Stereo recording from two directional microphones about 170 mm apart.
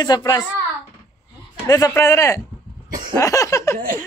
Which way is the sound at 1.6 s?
20° left (ahead or behind).